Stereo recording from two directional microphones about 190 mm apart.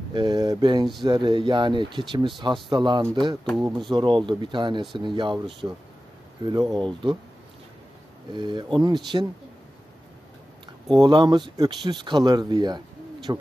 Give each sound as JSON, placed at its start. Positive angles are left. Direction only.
{"t": 0.1, "sound": "speech", "side_deg": -25}
{"t": 3.4, "sound": "speech", "side_deg": 0}
{"t": 3.9, "sound": "speech", "side_deg": -25}
{"t": 8.3, "sound": "speech", "side_deg": -25}
{"t": 11.0, "sound": "speech", "side_deg": -25}